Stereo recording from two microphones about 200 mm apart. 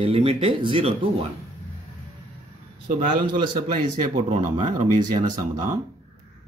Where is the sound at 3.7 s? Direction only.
40° right (ahead or behind).